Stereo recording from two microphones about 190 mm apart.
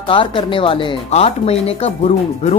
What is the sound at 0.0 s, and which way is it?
Speech, 25° left (ahead or behind).